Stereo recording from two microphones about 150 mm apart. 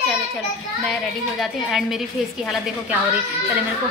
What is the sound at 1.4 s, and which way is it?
Speech, centre (ahead or behind).